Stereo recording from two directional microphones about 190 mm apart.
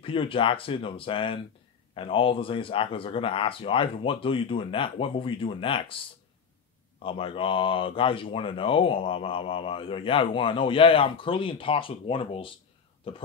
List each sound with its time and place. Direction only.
0.0 s speech: 30° left (ahead or behind)
7.0 s speech: 30° left (ahead or behind)